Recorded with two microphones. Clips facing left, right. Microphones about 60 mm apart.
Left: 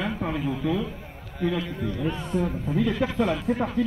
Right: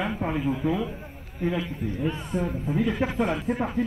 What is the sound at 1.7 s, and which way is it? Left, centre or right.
Speech, left.